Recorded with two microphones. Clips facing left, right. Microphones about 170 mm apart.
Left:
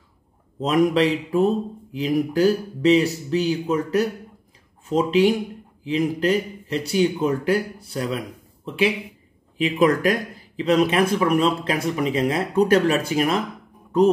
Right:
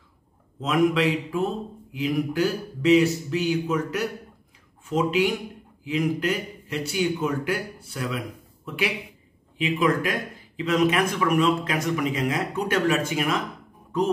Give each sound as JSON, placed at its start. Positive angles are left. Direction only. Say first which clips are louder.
{"t": 0.6, "sound": "speech", "louder": "left 3 dB", "side_deg": 35}
{"t": 9.6, "sound": "speech", "louder": "left 4 dB", "side_deg": 40}